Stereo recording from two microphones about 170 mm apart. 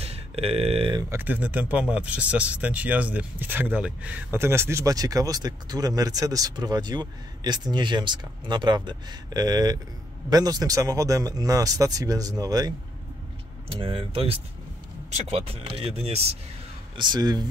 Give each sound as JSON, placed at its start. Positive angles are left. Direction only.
{"t": 0.0, "sound": "speech", "side_deg": -35}
{"t": 1.1, "sound": "speech", "side_deg": -10}
{"t": 16.9, "sound": "speech", "side_deg": -25}